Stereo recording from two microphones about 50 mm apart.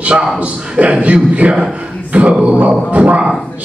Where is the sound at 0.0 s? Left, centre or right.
Right.